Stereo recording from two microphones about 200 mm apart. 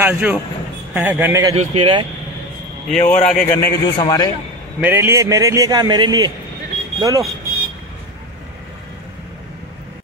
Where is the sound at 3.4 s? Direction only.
10° left (ahead or behind).